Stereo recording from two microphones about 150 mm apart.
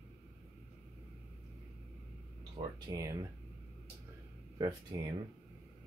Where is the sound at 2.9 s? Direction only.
20° right (ahead or behind).